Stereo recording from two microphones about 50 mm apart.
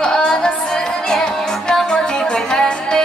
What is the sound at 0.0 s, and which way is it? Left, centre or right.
Music, centre.